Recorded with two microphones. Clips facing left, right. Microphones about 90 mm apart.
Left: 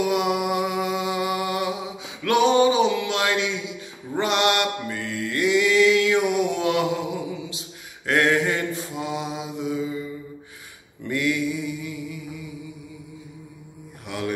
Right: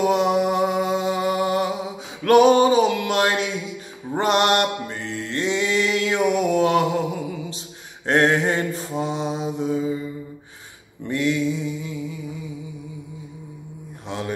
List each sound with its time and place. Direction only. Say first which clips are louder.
0.0 s music: right 4 dB; 35° right (ahead or behind)
4.1 s mantra: right 3 dB; 40° right (ahead or behind)
4.9 s mantra: even; 25° right (ahead or behind)
11.1 s mantra: right 2 dB; 25° right (ahead or behind)
14.0 s mantra: even; 25° right (ahead or behind)